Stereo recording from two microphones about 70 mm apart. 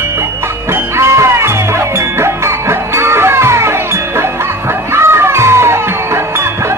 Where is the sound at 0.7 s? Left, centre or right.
Right.